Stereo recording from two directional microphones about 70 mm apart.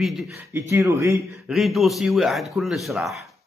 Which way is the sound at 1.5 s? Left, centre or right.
Centre.